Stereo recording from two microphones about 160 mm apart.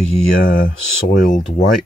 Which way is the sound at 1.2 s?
55° left (ahead or behind).